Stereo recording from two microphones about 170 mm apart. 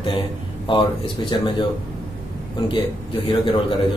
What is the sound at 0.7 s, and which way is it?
Speech, 30° left (ahead or behind).